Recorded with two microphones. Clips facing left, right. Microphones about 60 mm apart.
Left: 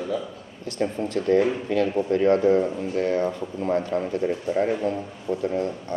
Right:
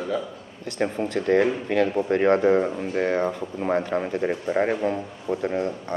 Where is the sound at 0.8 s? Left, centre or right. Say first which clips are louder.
Right 1 dB; right.